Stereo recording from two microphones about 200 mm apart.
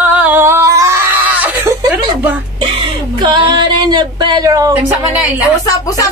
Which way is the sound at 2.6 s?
25° right (ahead or behind).